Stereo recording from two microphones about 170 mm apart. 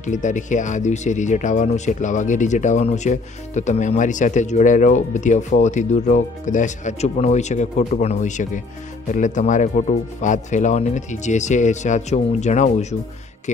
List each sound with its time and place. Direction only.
0.0 s speech: 45° left (ahead or behind)